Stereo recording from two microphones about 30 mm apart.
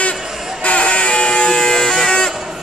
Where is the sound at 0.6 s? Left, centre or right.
Left.